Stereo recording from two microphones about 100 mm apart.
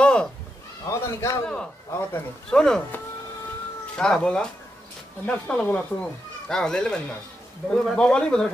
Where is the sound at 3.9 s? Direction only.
10° left (ahead or behind).